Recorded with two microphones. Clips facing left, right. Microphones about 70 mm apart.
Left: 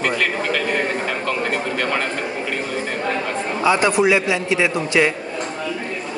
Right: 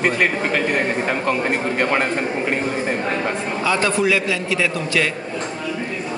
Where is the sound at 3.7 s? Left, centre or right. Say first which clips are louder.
Left 3 dB; centre.